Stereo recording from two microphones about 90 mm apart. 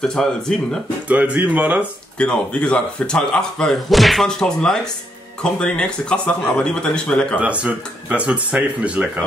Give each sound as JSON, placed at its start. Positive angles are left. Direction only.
{"t": 0.0, "sound": "speech", "side_deg": 5}
{"t": 1.0, "sound": "speech", "side_deg": -15}
{"t": 2.1, "sound": "speech", "side_deg": 10}
{"t": 7.3, "sound": "speech", "side_deg": -15}